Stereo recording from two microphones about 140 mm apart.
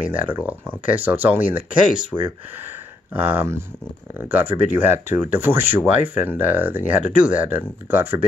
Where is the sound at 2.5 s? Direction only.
15° right (ahead or behind).